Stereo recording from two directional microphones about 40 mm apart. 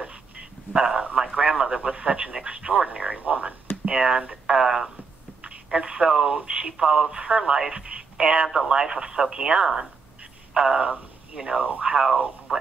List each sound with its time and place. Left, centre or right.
0.0 s a sound: right
1.1 s speech: centre; by 3.5 s right
3.8 s speech: right
4.6 s speech: centre
5.4 s speech: centre
8.5 s speech: centre
12.5 s radio: centre